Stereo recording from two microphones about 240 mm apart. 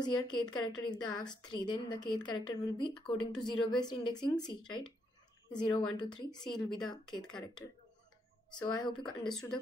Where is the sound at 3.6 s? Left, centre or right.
Centre.